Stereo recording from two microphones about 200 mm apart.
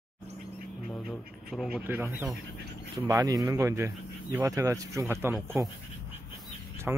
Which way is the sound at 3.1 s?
20° right (ahead or behind).